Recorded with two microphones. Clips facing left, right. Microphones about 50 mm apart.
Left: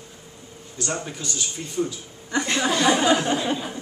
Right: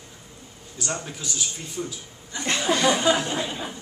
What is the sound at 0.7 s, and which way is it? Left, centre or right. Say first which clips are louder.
Speech: left 2 dB; centre.